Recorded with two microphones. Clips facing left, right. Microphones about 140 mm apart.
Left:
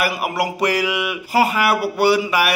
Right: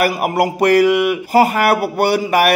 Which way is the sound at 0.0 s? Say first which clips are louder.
Right 5 dB; 50° right (ahead or behind).